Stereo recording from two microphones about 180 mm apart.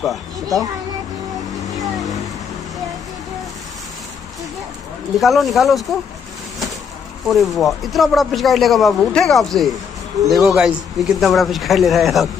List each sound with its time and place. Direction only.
0.0 s a child's voice: centre (ahead or behind)
5.2 s speech: centre (ahead or behind)
7.2 s speech: centre (ahead or behind)